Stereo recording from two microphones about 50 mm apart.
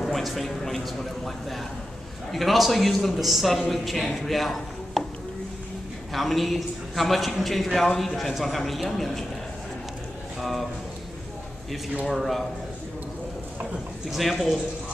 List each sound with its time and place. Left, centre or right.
0.0 s a man's voice: centre
6.1 s a man's voice: centre
10.4 s a man's voice: centre
12.1 s a man's voice: centre
14.1 s a man's voice: centre